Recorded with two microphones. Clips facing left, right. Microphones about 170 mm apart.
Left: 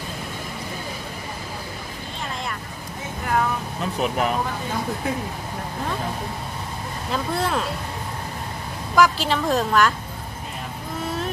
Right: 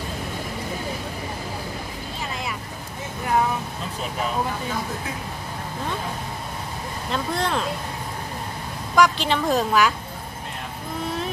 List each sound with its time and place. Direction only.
3.8 s vehicle: 65° left (ahead or behind)
7.1 s speech: 5° left (ahead or behind)
8.9 s speech: centre (ahead or behind)
11.1 s vehicle: centre (ahead or behind)